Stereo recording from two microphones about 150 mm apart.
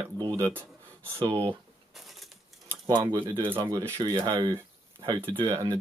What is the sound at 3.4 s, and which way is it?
Speech, 15° right (ahead or behind).